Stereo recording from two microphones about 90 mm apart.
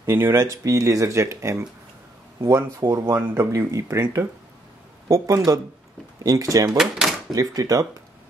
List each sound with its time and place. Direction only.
0.0 s speech: 30° right (ahead or behind)
6.8 s a sound: centre (ahead or behind)
7.3 s speech: 40° right (ahead or behind)